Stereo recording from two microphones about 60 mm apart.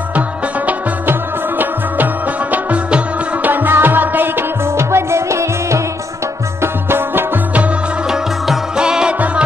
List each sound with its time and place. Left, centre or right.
2.5 s music: right
3.4 s music: right
4.7 s music: right
6.6 s music: right
8.1 s music: centre